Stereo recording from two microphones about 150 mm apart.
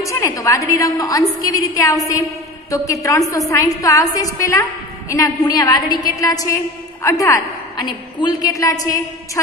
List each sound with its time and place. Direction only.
0.0 s a woman's voice: 20° left (ahead or behind)
7.0 s a sound: 20° left (ahead or behind)
8.2 s a woman's voice: 30° left (ahead or behind)